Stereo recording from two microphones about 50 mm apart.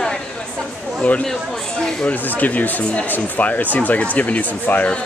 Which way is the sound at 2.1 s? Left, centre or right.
Left.